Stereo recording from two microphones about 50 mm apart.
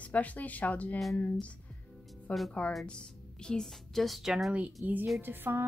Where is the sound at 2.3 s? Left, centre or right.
Left.